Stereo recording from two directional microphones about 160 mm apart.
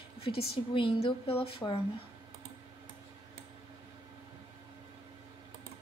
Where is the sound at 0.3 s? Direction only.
30° left (ahead or behind).